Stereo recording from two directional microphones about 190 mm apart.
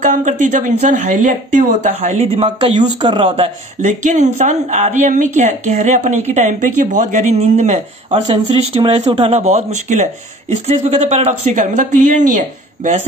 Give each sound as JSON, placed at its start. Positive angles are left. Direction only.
{"t": 0.0, "sound": "speech", "side_deg": -40}
{"t": 2.8, "sound": "speech", "side_deg": -25}
{"t": 3.8, "sound": "speech", "side_deg": -40}